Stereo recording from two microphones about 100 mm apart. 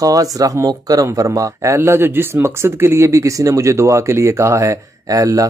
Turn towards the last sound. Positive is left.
turn(degrees=-35)  # may be behind; listen again after turning